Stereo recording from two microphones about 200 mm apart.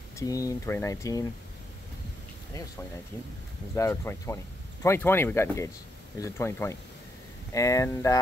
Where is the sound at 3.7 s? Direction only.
15° left (ahead or behind).